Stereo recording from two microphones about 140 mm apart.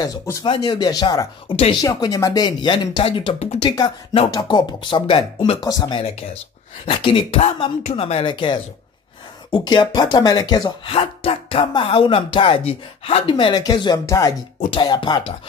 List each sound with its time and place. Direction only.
0.0 s speech: 25° left (ahead or behind)
11.0 s speech: 45° left (ahead or behind)